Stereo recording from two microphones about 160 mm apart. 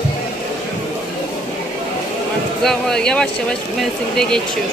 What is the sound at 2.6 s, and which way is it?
Speech, 5° left (ahead or behind).